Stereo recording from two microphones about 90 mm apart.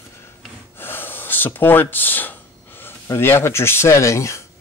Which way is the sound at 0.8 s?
25° left (ahead or behind).